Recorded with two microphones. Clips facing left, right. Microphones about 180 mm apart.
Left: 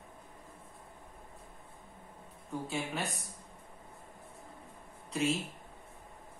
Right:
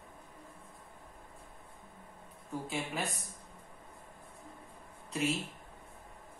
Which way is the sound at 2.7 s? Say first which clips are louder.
Even; centre (ahead or behind).